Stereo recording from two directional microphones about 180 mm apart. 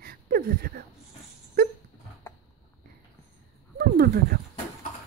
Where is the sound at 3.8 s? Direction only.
55° right (ahead or behind).